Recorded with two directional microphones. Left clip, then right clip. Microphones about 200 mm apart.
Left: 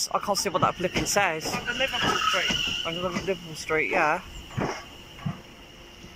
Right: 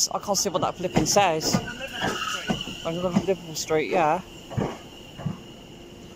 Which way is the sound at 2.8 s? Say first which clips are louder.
Right 3 dB; 10° right (ahead or behind).